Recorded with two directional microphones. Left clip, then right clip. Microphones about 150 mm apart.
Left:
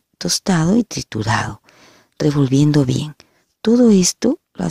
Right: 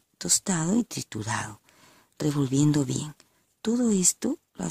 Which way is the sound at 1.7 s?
30° left (ahead or behind).